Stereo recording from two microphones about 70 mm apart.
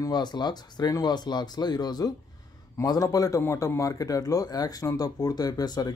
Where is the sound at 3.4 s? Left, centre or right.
Left.